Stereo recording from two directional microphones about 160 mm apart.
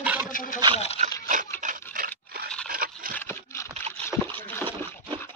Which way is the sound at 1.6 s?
55° right (ahead or behind).